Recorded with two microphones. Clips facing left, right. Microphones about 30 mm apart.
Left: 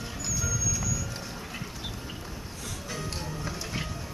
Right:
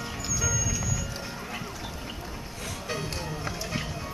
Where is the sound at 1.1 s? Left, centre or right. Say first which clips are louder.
Right 2 dB; centre.